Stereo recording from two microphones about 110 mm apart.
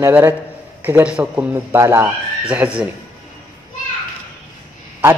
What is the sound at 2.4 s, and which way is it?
Speech, 10° right (ahead or behind).